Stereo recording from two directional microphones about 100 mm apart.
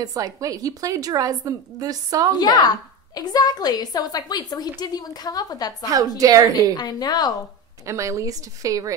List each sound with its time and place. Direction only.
0.0 s a woman's voice: 35° right (ahead or behind)
2.3 s a woman's voice: 40° left (ahead or behind)
5.9 s a woman's voice: 35° right (ahead or behind)
6.8 s a woman's voice: 40° left (ahead or behind)
7.8 s a woman's voice: 30° right (ahead or behind)